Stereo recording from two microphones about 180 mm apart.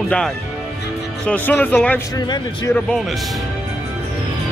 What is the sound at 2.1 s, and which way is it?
Speech, 20° left (ahead or behind).